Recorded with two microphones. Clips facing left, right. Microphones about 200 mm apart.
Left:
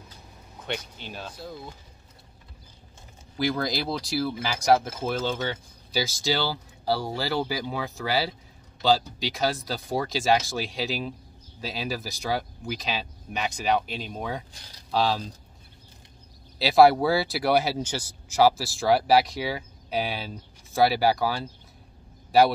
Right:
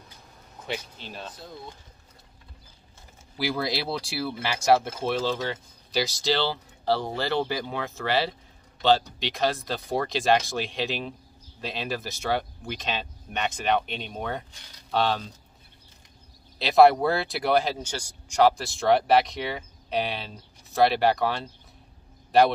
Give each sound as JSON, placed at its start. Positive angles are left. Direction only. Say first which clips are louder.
{"t": 0.7, "sound": "speech", "louder": "left 1 dB", "side_deg": 0}
{"t": 3.3, "sound": "speech", "louder": "left 1 dB", "side_deg": -5}
{"t": 16.5, "sound": "speech", "louder": "even", "side_deg": 5}